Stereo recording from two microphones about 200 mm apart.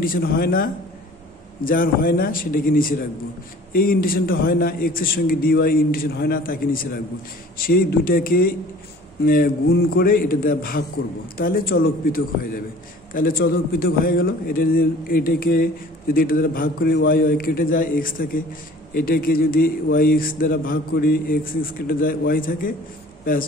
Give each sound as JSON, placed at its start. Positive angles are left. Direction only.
{"t": 0.0, "sound": "a man's voice", "side_deg": 45}